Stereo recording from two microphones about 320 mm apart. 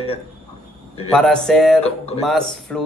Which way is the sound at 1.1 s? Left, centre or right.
Centre.